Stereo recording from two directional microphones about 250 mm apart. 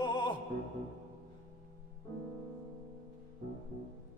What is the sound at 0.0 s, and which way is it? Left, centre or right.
Music, centre.